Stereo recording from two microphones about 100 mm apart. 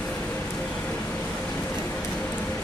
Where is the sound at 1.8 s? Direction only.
15° left (ahead or behind).